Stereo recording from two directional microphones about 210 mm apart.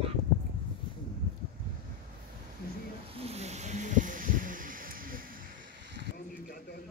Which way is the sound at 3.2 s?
30° right (ahead or behind).